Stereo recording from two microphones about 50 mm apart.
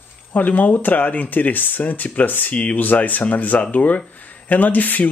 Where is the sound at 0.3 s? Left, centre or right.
Left.